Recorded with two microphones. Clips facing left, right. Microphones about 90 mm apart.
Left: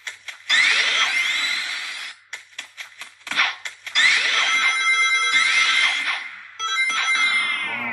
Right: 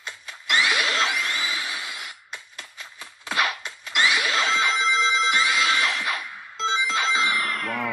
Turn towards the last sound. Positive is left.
turn(degrees=-25)  # may be behind; listen again after turning